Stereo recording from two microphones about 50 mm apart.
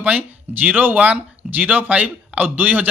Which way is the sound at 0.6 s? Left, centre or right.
Right.